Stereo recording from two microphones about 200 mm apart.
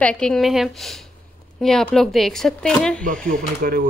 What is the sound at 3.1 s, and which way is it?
Speech, 45° right (ahead or behind).